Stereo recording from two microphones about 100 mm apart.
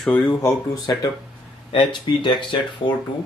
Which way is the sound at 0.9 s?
30° left (ahead or behind).